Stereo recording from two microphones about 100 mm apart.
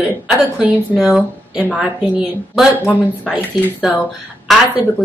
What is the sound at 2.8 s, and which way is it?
Speech, 15° left (ahead or behind).